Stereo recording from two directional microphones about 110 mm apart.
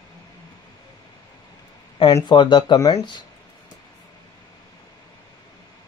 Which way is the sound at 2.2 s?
45° left (ahead or behind).